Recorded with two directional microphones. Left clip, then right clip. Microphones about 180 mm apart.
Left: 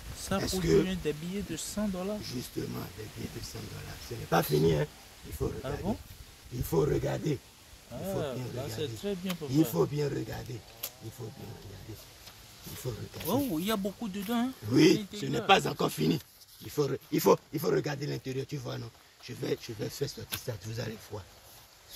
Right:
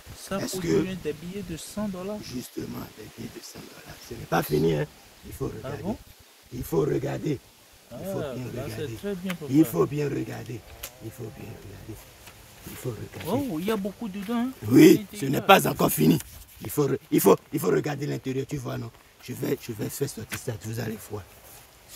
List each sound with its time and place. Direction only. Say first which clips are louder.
0.4 s speech: right 1 dB; 60° right (ahead or behind)
1.6 s speech: right 2 dB; 5° left (ahead or behind)
2.2 s speech: right 2 dB; 55° right (ahead or behind)
4.3 s speech: right 3 dB; 40° right (ahead or behind)
5.6 s speech: right 2 dB; 5° left (ahead or behind)
6.6 s speech: right 3 dB; 35° right (ahead or behind)
8.1 s speech: right 3 dB; 5° left (ahead or behind)
9.5 s speech: right 6 dB; 35° right (ahead or behind)
13.2 s speech: right 3 dB; 10° left (ahead or behind)
14.7 s speech: right 8 dB; 75° right (ahead or behind)